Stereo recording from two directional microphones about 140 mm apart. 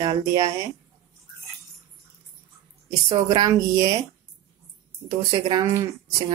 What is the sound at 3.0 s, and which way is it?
Speech, 30° right (ahead or behind).